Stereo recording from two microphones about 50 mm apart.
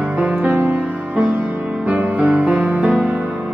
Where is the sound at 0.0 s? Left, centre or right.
Right.